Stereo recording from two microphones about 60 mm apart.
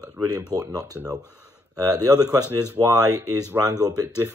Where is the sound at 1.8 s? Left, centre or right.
Right.